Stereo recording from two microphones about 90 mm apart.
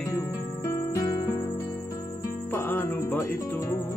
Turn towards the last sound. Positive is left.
turn(degrees=25)  # may be behind; listen again after turning